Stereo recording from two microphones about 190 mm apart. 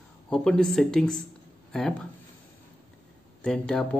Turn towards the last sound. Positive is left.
turn(degrees=5)  # may be behind; listen again after turning